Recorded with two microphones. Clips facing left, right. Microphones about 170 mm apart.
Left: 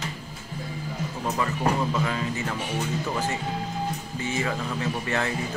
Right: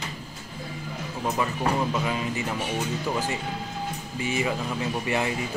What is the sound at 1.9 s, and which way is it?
Speech, 15° right (ahead or behind).